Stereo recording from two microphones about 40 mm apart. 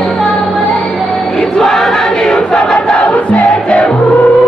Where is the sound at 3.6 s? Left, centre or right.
Left.